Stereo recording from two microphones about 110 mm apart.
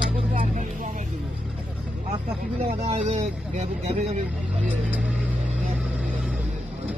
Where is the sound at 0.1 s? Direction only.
55° right (ahead or behind).